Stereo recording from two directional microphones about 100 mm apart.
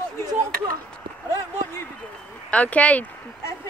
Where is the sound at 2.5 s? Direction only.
15° left (ahead or behind).